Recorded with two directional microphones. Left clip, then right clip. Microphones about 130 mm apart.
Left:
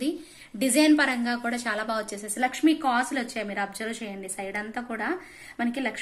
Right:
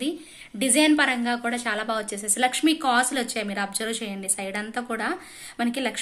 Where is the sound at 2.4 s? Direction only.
25° right (ahead or behind).